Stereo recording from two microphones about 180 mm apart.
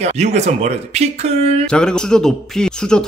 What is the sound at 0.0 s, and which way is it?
Speech, 35° right (ahead or behind).